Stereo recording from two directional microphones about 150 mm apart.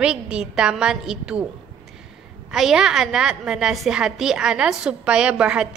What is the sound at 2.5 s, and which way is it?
A woman's voice, 5° right (ahead or behind).